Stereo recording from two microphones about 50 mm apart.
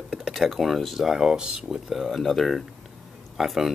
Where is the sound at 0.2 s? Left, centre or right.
Centre.